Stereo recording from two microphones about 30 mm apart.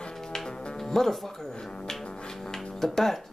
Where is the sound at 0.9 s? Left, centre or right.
Centre.